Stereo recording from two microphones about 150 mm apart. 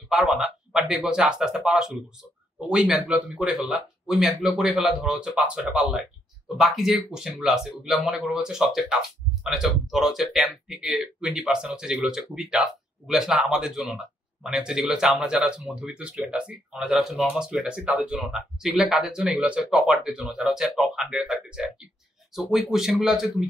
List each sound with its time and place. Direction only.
0.1 s speech: centre (ahead or behind)